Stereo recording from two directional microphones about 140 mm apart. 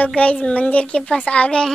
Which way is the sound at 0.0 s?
10° left (ahead or behind).